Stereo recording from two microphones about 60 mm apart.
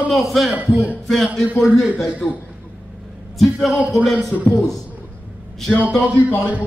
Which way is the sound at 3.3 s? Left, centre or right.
Centre.